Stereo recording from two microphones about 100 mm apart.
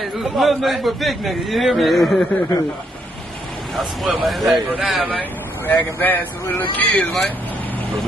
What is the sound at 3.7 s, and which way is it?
A man's voice, centre (ahead or behind).